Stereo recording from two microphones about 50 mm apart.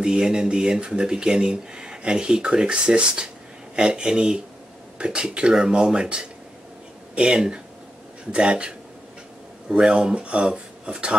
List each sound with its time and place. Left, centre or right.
0.0 s speech: centre